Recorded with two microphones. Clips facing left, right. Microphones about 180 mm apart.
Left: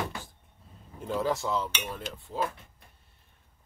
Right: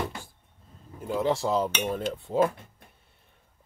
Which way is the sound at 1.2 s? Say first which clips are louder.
Right 5 dB; 30° right (ahead or behind).